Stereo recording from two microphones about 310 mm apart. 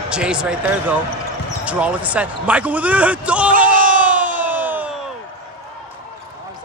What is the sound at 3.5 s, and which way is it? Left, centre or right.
Crowd, right.